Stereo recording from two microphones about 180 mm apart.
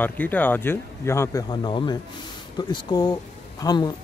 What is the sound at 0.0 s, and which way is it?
Speech, 10° left (ahead or behind).